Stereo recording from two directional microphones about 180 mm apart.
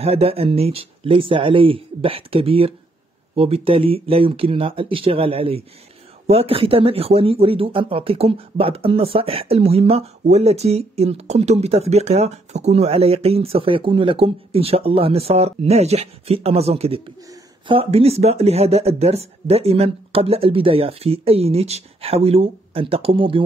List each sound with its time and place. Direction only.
0.0 s speech: 35° right (ahead or behind)